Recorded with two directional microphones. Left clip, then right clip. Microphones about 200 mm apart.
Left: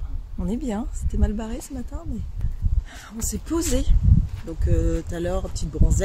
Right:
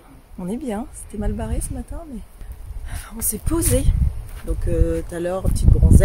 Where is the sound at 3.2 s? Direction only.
5° left (ahead or behind).